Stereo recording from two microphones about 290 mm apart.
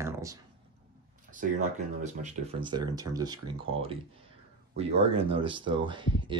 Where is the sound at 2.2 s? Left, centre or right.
Centre.